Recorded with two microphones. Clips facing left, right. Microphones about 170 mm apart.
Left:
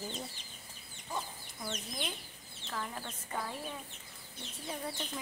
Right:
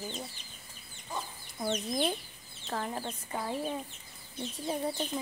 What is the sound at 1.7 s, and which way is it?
Speech, 45° right (ahead or behind).